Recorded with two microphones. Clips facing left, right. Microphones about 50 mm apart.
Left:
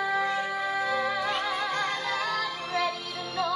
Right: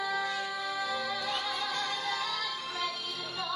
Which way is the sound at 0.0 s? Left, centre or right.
Left.